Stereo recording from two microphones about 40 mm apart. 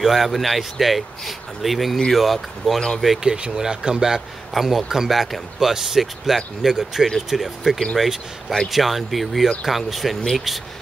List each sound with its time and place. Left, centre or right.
0.0 s speech: centre
3.2 s speech: right
4.6 s speech: centre